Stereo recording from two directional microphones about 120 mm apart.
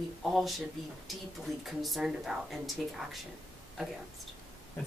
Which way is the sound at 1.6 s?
Centre (ahead or behind).